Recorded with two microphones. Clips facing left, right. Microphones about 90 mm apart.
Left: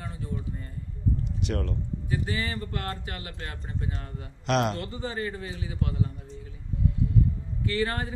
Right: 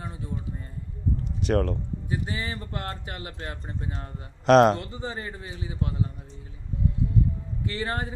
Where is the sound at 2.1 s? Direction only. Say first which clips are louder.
Left 1 dB; 25° right (ahead or behind).